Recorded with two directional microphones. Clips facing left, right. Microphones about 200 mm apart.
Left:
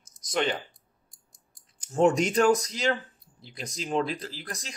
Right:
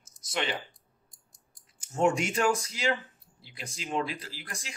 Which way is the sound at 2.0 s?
40° left (ahead or behind).